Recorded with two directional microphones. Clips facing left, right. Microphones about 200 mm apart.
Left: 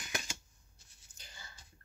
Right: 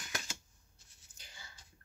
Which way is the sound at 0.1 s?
15° left (ahead or behind).